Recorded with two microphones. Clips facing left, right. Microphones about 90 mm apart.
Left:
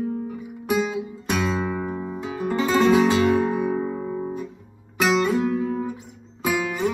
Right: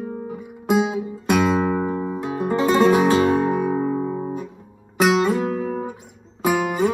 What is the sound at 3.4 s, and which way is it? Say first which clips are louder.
Music: right 2 dB; 45° right (ahead or behind).